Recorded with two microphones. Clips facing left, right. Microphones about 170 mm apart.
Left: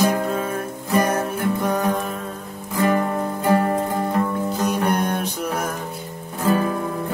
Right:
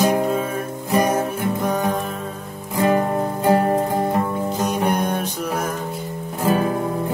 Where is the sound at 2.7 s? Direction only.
20° right (ahead or behind).